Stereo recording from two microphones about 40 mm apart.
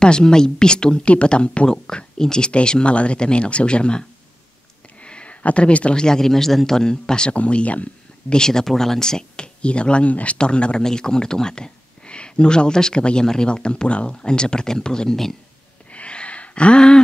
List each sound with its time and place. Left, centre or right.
0.0 s speech: centre
5.0 s a sound: left
5.9 s a man's voice: centre
7.3 s speech: left
8.3 s a man's voice: centre
9.6 s speech: left
15.9 s a sound: left